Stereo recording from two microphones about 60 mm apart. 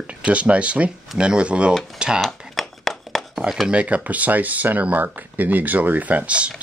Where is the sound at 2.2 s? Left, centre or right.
Centre.